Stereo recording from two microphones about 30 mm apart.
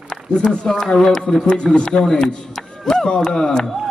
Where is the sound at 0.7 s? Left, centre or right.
Centre.